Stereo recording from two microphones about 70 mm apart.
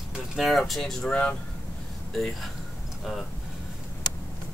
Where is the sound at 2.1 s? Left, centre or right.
Centre.